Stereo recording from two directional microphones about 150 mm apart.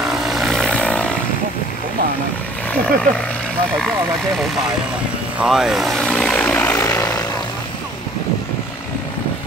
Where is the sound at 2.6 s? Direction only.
10° left (ahead or behind).